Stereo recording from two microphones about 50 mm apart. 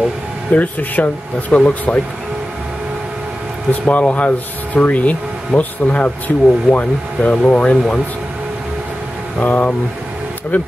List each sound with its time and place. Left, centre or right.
0.5 s speech: left
1.5 s speech: left
3.8 s speech: left
9.4 s speech: left